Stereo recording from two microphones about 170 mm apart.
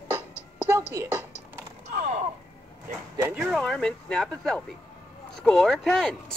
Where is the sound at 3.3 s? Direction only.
5° right (ahead or behind).